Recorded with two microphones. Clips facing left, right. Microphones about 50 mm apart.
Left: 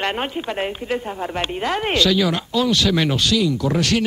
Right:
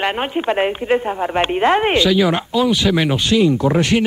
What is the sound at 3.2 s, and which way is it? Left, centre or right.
Speech, right.